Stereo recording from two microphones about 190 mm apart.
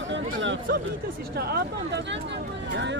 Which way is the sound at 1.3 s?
55° right (ahead or behind).